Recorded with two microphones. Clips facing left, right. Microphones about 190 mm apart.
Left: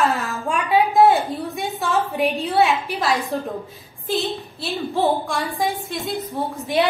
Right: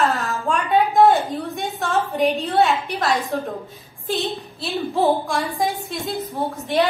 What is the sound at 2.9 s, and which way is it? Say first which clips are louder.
A woman's voice: even; centre (ahead or behind).